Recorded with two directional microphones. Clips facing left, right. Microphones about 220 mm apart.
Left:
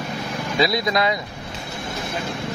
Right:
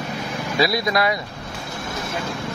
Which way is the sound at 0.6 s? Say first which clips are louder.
Even; 20° left (ahead or behind).